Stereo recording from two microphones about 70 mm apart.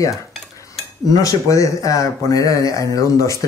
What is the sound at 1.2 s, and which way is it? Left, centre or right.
Speech, left.